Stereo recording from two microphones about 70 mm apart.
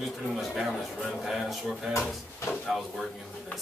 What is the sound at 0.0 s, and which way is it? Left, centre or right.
Speech, centre.